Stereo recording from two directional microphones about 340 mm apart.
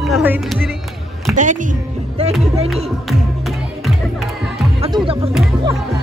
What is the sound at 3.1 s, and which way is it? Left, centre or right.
Music, centre.